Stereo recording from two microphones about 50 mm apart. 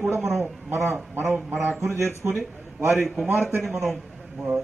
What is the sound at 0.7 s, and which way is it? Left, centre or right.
A man's voice, right.